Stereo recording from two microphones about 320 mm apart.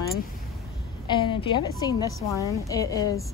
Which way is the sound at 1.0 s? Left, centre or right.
Centre.